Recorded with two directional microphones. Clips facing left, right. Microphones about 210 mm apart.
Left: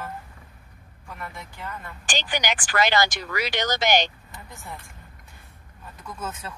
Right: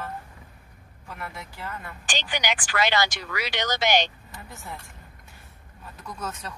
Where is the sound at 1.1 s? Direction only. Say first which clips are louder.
Even; 5° right (ahead or behind).